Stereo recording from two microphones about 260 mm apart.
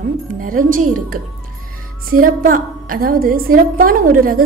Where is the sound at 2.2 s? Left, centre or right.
Right.